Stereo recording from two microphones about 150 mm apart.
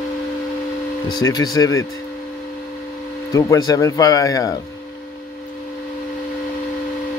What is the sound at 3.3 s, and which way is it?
Speech, 20° left (ahead or behind).